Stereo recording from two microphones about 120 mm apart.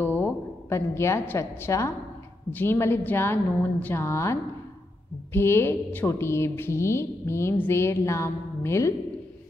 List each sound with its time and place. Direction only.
0.0 s a woman's voice: 15° left (ahead or behind)